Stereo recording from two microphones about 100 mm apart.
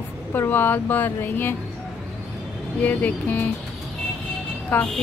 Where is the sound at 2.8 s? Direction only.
15° left (ahead or behind).